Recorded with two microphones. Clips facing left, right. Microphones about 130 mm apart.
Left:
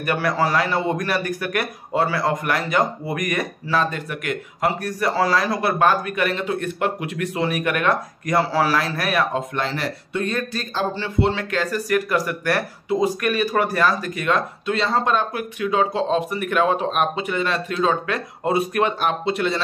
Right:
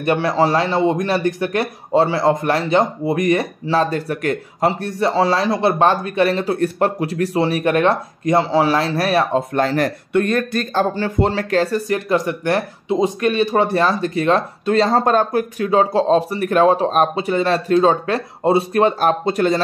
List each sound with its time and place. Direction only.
0.0 s a man's voice: 25° right (ahead or behind); by 19.6 s 40° right (ahead or behind)